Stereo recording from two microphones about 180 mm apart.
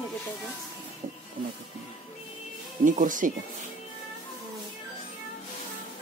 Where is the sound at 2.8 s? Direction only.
45° right (ahead or behind).